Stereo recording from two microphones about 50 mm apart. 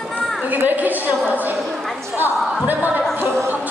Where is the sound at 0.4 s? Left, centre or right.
Right.